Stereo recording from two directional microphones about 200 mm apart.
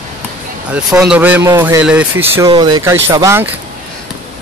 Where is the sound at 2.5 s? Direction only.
20° right (ahead or behind).